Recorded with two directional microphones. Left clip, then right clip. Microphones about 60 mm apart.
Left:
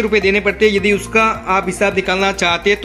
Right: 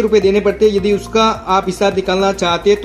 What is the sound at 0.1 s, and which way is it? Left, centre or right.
Speech, right.